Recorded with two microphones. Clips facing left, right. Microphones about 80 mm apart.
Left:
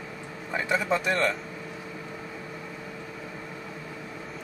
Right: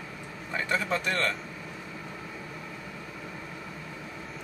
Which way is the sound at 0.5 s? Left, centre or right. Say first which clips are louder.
Left 3 dB; centre.